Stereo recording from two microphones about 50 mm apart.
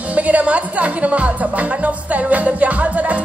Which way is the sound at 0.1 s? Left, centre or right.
Right.